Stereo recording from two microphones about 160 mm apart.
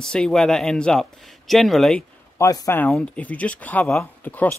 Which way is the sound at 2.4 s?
20° left (ahead or behind).